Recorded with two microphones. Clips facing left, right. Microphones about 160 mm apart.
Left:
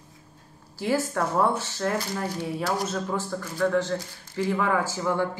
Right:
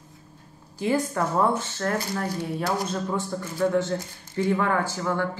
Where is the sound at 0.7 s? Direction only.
5° left (ahead or behind).